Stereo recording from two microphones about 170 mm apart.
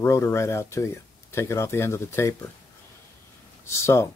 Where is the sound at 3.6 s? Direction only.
15° left (ahead or behind).